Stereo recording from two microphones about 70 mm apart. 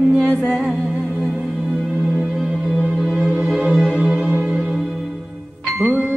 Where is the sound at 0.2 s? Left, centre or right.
Centre.